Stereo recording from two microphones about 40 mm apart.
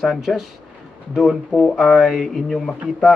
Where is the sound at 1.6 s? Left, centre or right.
Centre.